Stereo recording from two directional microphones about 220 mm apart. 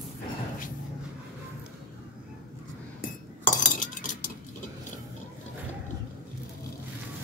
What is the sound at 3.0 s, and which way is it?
Cutlery, 35° left (ahead or behind).